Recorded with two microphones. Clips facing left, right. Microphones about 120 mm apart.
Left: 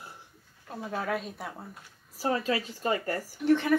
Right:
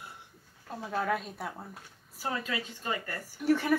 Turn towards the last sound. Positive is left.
turn(degrees=-5)  # may be behind; listen again after turning